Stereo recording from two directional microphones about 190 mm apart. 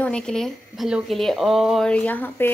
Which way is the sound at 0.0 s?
5° left (ahead or behind).